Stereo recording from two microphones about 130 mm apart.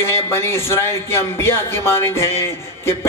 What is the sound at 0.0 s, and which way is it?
A man's voice, 20° left (ahead or behind).